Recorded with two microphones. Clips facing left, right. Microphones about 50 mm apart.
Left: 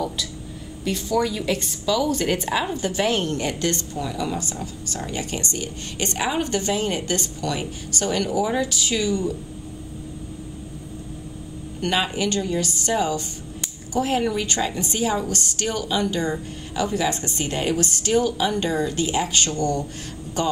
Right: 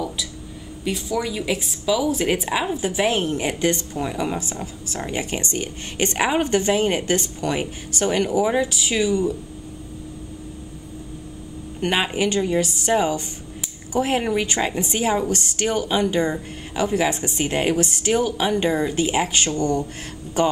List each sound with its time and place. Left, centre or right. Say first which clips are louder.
0.8 s a woman's voice: left 2 dB; centre; by 4.4 s right
4.4 s a woman's voice: even; centre
11.8 s a woman's voice: right 2 dB; right